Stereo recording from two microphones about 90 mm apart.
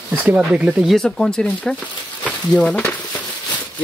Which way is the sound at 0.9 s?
5° left (ahead or behind).